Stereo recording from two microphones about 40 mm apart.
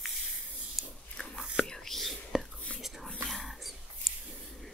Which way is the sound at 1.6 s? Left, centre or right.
Centre.